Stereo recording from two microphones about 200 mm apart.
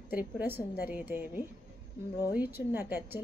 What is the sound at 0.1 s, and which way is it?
A woman's voice, 10° right (ahead or behind).